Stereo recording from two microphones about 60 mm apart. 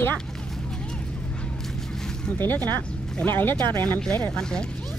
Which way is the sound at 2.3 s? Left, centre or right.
Left.